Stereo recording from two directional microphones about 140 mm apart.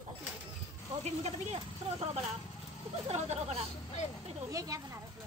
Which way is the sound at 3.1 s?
50° right (ahead or behind).